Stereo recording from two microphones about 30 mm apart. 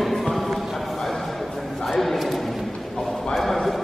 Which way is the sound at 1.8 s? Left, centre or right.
Centre.